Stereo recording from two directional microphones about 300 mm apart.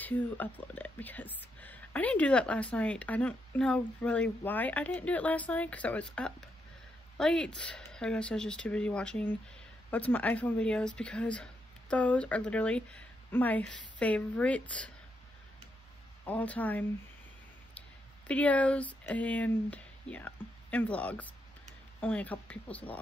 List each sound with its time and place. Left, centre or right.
0.0 s speech: centre
16.3 s speech: centre
18.2 s speech: centre